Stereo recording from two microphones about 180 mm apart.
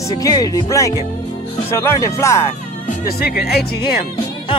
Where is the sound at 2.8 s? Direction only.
55° left (ahead or behind).